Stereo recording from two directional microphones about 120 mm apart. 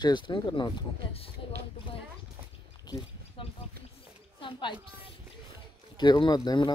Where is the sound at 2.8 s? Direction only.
35° left (ahead or behind).